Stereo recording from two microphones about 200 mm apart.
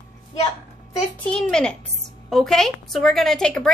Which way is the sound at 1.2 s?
5° left (ahead or behind).